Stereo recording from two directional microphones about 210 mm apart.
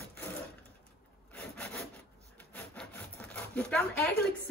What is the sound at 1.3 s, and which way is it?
Rub, 5° left (ahead or behind).